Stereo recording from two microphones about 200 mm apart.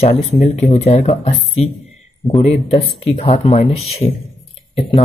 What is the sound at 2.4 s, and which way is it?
Speech, 30° left (ahead or behind).